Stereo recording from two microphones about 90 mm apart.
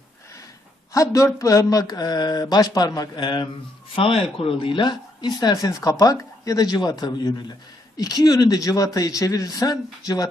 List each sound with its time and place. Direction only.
0.9 s speech: 35° left (ahead or behind); by 3.4 s 55° left (ahead or behind)
3.9 s speech: 90° left; by 9.8 s 40° left (ahead or behind)